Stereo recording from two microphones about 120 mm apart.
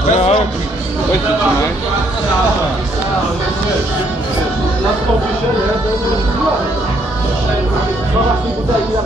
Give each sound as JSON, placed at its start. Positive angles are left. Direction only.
{"t": 0.1, "sound": "music", "side_deg": 65}